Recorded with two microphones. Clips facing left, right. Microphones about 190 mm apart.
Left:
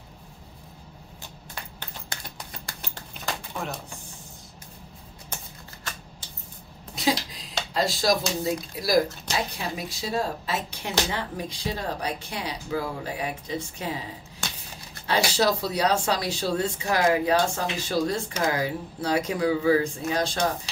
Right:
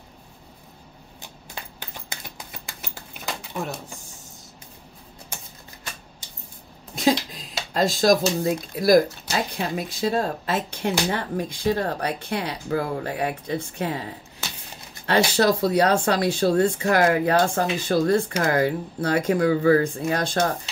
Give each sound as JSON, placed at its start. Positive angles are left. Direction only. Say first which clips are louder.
{"t": 2.3, "sound": "rodents", "louder": "even", "side_deg": -10}
{"t": 7.7, "sound": "speech", "louder": "right 5 dB", "side_deg": -50}
{"t": 14.4, "sound": "a sound", "louder": "left 1 dB", "side_deg": -5}
{"t": 15.0, "sound": "speech", "louder": "right 4 dB", "side_deg": -55}